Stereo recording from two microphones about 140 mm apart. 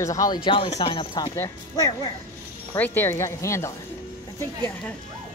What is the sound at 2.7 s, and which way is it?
Speech, 15° left (ahead or behind).